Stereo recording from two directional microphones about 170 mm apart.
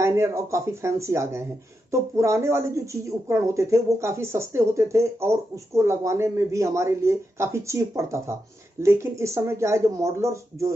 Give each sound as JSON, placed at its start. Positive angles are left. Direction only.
{"t": 0.0, "sound": "a woman's voice", "side_deg": -15}